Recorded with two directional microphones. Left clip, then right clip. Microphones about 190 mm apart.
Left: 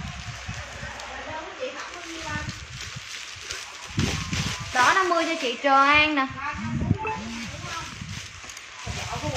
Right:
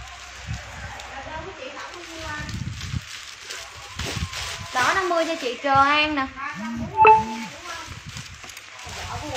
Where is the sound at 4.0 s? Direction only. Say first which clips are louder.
Left 2 dB; 5° right (ahead or behind).